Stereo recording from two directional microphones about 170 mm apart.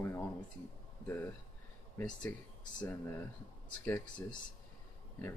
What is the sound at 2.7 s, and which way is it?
Speech, 20° left (ahead or behind).